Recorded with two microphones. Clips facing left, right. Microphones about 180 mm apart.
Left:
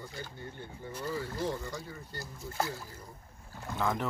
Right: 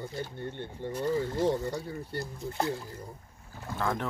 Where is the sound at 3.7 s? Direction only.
Centre (ahead or behind).